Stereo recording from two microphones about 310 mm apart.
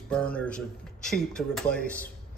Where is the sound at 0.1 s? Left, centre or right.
Centre.